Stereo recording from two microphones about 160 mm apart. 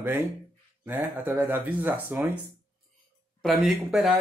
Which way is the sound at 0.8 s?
10° right (ahead or behind).